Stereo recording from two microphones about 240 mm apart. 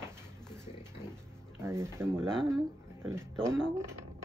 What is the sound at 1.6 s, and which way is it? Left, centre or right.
Speech, centre.